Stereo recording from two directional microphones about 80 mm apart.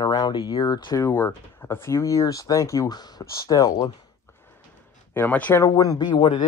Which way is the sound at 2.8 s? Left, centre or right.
Left.